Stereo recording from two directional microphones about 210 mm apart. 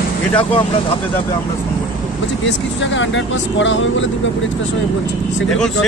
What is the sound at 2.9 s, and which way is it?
Speech, 60° left (ahead or behind).